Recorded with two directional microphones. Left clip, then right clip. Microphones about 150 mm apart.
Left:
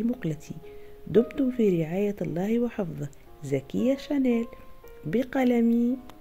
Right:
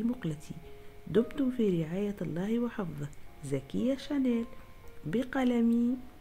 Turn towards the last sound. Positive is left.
turn(degrees=20)  # may be behind; listen again after turning